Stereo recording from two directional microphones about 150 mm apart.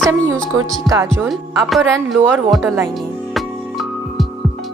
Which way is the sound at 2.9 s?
Centre (ahead or behind).